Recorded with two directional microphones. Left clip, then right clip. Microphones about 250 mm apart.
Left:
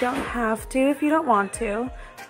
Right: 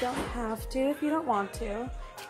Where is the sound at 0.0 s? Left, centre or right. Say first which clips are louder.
Left 8 dB; centre.